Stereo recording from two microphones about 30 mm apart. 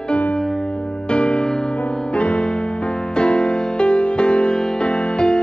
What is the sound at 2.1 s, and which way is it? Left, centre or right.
Music, left.